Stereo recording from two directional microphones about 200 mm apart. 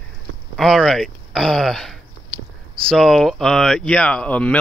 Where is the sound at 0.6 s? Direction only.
Centre (ahead or behind).